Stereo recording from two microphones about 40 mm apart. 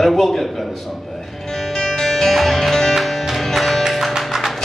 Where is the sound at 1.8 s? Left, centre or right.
Centre.